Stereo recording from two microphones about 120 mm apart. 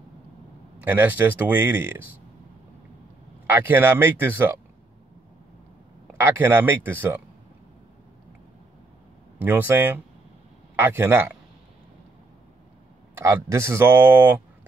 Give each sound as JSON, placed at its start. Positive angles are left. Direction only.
{"t": 0.8, "sound": "speech", "side_deg": -15}
{"t": 3.4, "sound": "speech", "side_deg": -20}
{"t": 6.1, "sound": "speech", "side_deg": -20}
{"t": 9.4, "sound": "speech", "side_deg": -15}
{"t": 13.2, "sound": "speech", "side_deg": -25}